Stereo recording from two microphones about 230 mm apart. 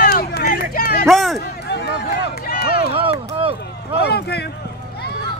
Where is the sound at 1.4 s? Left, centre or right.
Left.